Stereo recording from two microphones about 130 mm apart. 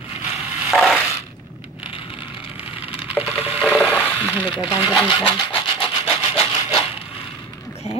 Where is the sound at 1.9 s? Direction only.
45° left (ahead or behind).